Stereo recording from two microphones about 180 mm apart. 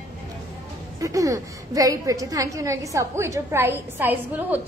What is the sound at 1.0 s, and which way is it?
A woman's voice, 20° right (ahead or behind).